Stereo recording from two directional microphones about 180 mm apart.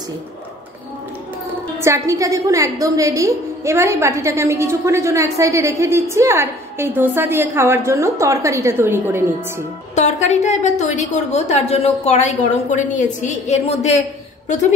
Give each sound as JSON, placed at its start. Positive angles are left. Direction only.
{"t": 1.8, "sound": "a woman's voice", "side_deg": -15}
{"t": 9.9, "sound": "a woman's voice", "side_deg": 40}